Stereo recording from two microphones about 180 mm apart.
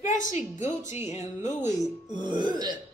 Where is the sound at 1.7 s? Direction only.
20° left (ahead or behind).